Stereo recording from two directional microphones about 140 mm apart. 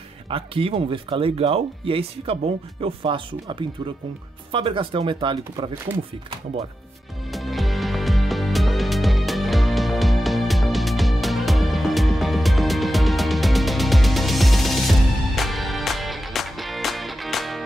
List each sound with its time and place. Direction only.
0.3 s speech: 40° right (ahead or behind)
7.3 s music: centre (ahead or behind)